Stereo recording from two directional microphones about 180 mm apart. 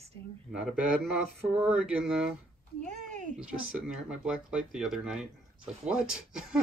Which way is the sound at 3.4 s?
5° right (ahead or behind).